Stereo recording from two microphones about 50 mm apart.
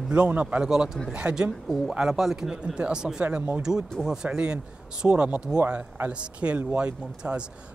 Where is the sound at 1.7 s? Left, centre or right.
Centre.